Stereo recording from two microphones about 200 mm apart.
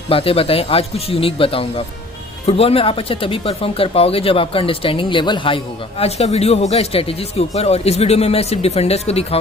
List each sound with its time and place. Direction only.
0.1 s speech: 30° left (ahead or behind)